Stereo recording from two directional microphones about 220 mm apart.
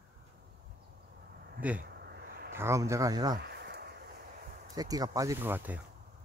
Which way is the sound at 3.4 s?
50° right (ahead or behind).